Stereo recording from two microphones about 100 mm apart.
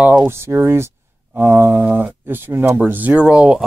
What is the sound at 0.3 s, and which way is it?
Speech, 25° right (ahead or behind).